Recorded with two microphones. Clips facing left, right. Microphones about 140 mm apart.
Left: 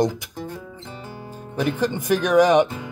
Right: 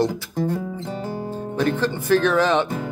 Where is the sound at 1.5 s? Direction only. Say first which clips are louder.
Even; 10° left (ahead or behind).